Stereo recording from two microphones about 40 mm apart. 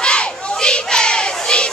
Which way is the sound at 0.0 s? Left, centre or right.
Left.